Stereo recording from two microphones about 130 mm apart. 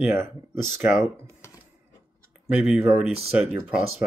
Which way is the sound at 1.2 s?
20° left (ahead or behind).